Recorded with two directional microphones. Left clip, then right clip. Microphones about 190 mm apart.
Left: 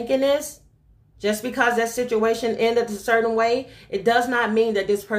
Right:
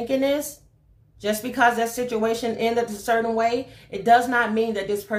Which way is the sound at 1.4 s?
30° left (ahead or behind).